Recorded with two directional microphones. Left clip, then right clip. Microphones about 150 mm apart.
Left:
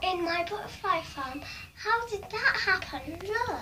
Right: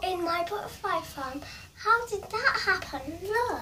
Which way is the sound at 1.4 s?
15° right (ahead or behind).